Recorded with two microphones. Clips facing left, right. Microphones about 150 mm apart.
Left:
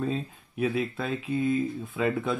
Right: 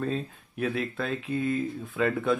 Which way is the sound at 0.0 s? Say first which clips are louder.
Even; 5° left (ahead or behind).